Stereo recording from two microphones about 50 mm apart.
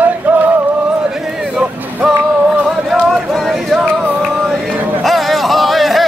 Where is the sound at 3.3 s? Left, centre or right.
Centre.